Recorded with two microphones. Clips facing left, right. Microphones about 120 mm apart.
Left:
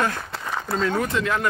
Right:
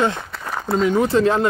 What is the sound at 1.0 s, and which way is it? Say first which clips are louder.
Speech: right 7 dB; 30° right (ahead or behind).